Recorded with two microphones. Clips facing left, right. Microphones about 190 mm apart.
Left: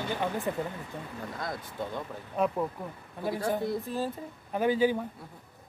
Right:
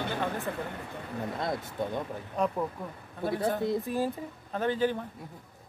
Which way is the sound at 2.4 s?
5° left (ahead or behind).